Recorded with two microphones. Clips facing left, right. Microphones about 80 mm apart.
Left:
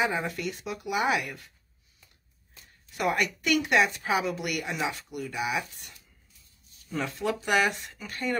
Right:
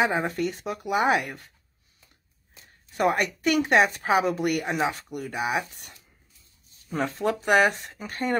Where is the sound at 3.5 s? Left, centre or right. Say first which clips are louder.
Right 3 dB; right.